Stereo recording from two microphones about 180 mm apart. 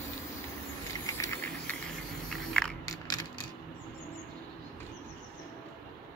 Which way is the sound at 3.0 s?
25° left (ahead or behind).